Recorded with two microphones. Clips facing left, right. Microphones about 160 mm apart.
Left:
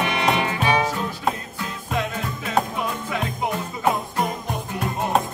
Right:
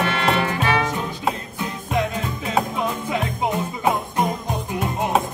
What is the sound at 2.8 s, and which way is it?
Music, 20° right (ahead or behind).